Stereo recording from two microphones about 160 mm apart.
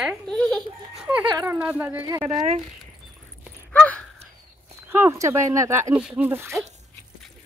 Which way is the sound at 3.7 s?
10° left (ahead or behind).